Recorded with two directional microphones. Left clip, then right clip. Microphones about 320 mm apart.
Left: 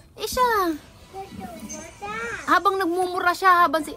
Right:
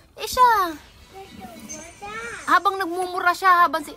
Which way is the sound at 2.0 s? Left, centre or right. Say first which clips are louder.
Left 3 dB; left.